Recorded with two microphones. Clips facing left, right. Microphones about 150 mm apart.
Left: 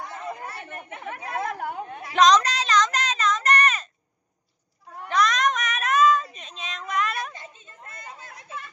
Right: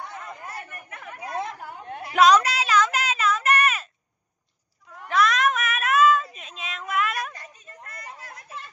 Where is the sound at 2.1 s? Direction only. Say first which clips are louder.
Right 1 dB; 10° right (ahead or behind).